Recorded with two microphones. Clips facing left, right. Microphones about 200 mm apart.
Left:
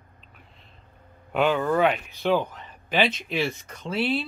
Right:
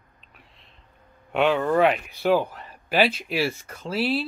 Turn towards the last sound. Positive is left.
turn(degrees=-5)  # may be behind; listen again after turning